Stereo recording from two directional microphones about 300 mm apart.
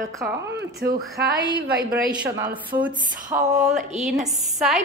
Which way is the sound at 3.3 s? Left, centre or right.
Right.